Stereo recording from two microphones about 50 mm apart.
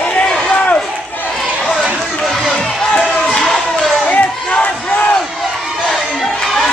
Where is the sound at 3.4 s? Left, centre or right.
Centre.